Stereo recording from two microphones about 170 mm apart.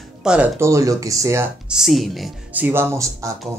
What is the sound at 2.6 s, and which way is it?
Speech, 15° right (ahead or behind).